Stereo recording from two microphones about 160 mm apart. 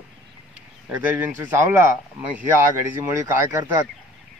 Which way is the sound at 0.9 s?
10° right (ahead or behind).